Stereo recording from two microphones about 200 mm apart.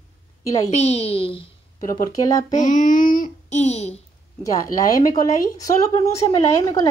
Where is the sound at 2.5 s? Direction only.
40° left (ahead or behind).